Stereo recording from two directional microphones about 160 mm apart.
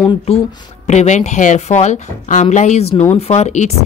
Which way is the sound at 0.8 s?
45° left (ahead or behind).